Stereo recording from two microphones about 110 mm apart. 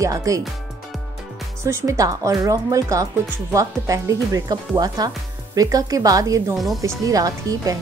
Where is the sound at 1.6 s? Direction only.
25° right (ahead or behind).